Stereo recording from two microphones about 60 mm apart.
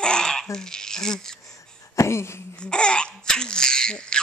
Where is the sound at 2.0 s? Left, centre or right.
Left.